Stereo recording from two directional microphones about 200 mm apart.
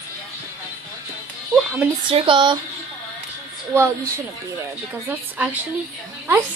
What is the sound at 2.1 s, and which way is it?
Speech, 25° right (ahead or behind).